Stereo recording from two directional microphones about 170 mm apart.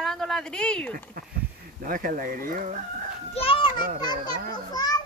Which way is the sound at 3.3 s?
35° left (ahead or behind).